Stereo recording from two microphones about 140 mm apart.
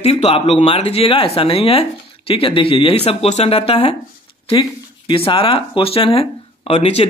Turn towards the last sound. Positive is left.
turn(degrees=45)  # may be behind; listen again after turning